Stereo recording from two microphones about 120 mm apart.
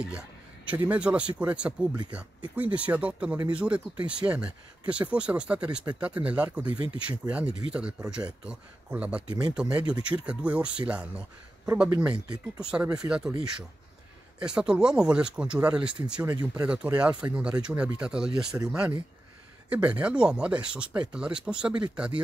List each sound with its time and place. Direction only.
0.1 s speech: 10° right (ahead or behind)
13.0 s speech: 25° right (ahead or behind)
14.4 s speech: 5° right (ahead or behind)